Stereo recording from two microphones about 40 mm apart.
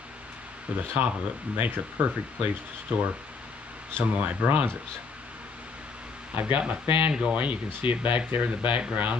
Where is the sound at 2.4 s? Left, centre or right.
Right.